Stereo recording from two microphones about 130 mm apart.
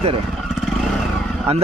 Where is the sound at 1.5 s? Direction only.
50° right (ahead or behind).